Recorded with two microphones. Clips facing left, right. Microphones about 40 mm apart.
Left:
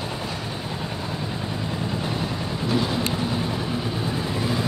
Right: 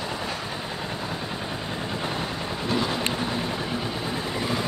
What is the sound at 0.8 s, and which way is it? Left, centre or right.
Vehicle, centre.